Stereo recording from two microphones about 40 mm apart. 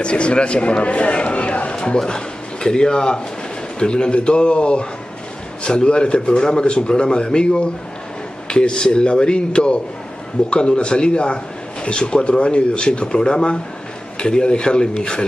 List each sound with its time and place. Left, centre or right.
0.0 s a man's voice: left
2.0 s a man's voice: centre